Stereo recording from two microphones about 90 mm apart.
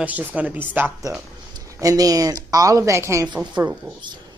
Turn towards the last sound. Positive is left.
turn(degrees=-10)  # may be behind; listen again after turning